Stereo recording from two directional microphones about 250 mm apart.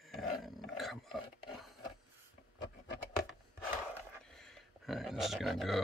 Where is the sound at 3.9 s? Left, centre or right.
Centre.